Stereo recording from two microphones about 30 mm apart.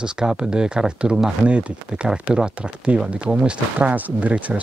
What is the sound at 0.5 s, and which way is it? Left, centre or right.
Speech, right.